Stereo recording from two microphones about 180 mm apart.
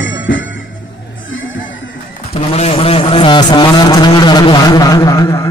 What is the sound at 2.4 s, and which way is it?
A man's voice, 35° left (ahead or behind).